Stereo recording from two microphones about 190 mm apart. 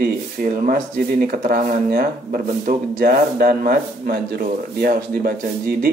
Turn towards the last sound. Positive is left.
turn(degrees=-50)  # may be behind; listen again after turning